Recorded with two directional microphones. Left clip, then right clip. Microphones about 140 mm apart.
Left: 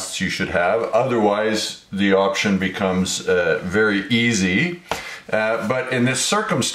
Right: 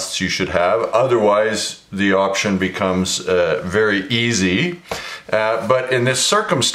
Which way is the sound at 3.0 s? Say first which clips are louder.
Right 2 dB; 30° right (ahead or behind).